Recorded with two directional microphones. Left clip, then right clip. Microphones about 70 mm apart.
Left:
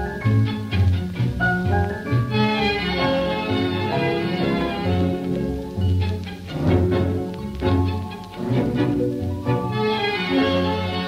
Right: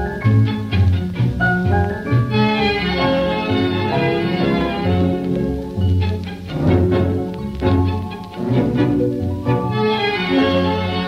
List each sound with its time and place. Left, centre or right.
0.3 s music: left
6.6 s music: left